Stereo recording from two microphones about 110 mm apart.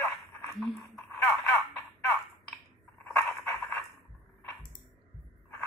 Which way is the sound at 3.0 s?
20° left (ahead or behind).